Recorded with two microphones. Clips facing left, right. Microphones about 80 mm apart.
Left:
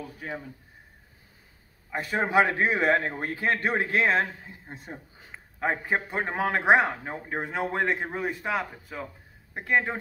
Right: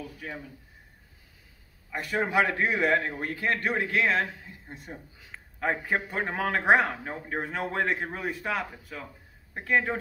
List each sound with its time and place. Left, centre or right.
0.0 s a man's voice: left
1.9 s a man's voice: left
5.3 s a man's voice: centre